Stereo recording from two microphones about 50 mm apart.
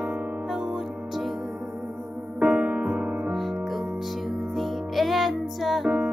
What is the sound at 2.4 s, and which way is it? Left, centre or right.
Music, right.